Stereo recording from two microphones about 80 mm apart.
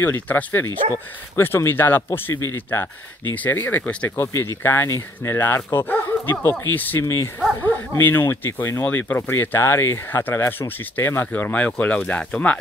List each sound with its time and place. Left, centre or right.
0.0 s speech: left
3.4 s speech: left
4.3 s speech: left
7.0 s speech: left
7.6 s speech: left